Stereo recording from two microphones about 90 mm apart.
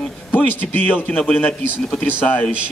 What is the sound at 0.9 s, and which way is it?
A man's voice, 15° left (ahead or behind).